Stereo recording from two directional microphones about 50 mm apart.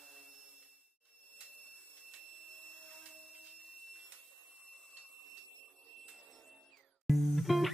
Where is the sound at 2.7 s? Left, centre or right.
Centre.